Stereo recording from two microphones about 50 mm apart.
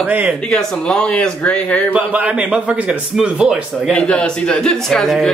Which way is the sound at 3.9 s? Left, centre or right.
Left.